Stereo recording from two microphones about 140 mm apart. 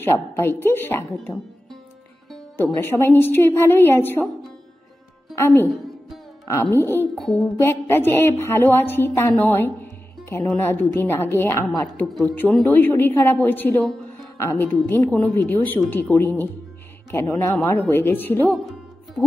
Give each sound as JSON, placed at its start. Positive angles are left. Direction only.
{"t": 0.0, "sound": "a woman's voice", "side_deg": 15}
{"t": 2.5, "sound": "a woman's voice", "side_deg": 15}
{"t": 5.3, "sound": "a woman's voice", "side_deg": 20}
{"t": 7.2, "sound": "music", "side_deg": 5}
{"t": 7.6, "sound": "a woman's voice", "side_deg": 15}